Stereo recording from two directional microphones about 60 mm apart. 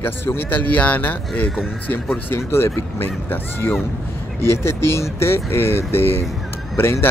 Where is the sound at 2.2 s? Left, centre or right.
Left.